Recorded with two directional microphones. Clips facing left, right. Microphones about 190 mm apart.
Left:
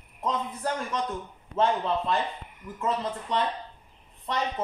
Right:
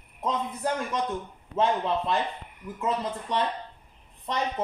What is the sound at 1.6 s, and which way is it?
A woman's voice, 10° right (ahead or behind).